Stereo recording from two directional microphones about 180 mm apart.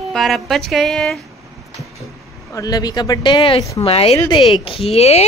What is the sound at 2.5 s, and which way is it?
Speech, 20° left (ahead or behind).